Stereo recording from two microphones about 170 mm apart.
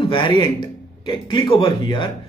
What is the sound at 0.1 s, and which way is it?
A man's voice, 25° left (ahead or behind).